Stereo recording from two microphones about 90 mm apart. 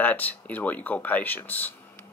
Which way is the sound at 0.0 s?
20° left (ahead or behind).